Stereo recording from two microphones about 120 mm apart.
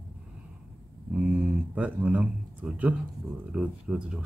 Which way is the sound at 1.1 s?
10° right (ahead or behind).